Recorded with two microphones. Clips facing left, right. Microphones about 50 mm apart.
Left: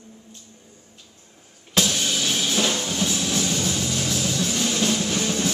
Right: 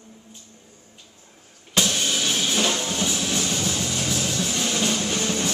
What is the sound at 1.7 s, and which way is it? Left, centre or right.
Music, centre.